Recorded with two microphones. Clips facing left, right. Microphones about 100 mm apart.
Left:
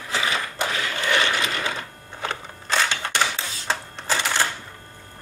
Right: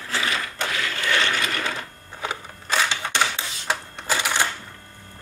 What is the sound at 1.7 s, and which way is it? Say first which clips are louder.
Typewriter: left 1 dB; 5° right (ahead or behind).